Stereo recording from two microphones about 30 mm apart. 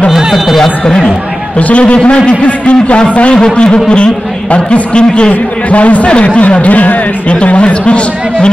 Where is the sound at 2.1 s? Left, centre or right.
Left.